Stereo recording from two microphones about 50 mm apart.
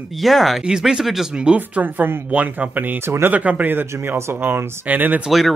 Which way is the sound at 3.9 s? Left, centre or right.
Right.